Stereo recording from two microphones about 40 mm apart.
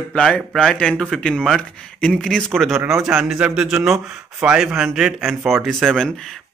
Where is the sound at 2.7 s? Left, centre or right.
Centre.